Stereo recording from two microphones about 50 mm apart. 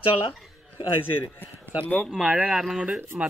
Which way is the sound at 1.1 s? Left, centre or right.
Left.